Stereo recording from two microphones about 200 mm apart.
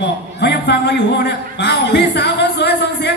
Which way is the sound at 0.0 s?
55° left (ahead or behind).